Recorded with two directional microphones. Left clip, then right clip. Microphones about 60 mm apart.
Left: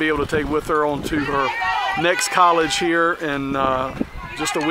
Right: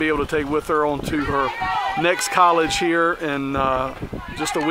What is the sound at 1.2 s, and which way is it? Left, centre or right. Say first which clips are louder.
Speech: left 2 dB; left.